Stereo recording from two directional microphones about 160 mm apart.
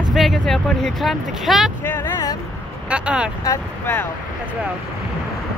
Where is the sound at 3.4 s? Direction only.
15° left (ahead or behind).